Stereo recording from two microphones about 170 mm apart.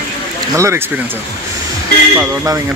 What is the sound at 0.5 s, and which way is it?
Speech, 15° right (ahead or behind).